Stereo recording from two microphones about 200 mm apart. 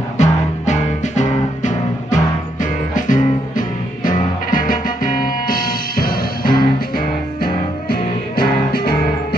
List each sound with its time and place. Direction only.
0.2 s music: 35° left (ahead or behind)